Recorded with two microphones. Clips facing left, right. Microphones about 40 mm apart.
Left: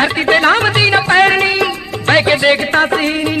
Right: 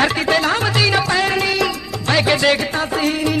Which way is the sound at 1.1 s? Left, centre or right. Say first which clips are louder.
Left 7 dB; left.